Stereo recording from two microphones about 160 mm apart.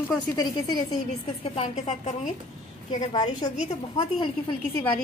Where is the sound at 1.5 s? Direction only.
40° left (ahead or behind).